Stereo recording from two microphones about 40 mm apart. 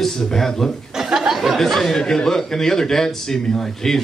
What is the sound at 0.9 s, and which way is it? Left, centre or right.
Speech, centre.